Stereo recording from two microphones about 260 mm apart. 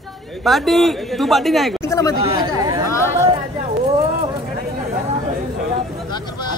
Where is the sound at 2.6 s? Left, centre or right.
Centre.